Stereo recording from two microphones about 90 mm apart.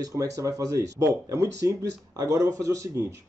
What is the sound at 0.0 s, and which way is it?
Speech, 40° right (ahead or behind).